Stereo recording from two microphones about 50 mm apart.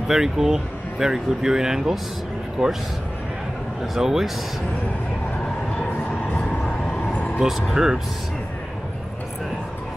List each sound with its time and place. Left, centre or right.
0.1 s speech: centre
3.8 s speech: centre
6.9 s vehicle: left
7.3 s speech: centre